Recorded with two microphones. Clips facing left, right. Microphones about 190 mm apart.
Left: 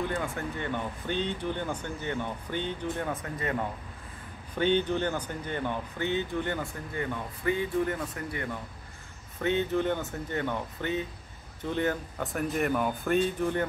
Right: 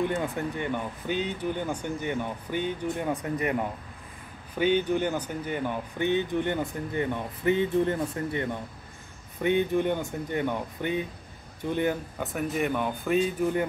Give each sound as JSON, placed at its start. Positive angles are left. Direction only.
{"t": 0.1, "sound": "speech", "side_deg": -20}
{"t": 12.2, "sound": "speech", "side_deg": 0}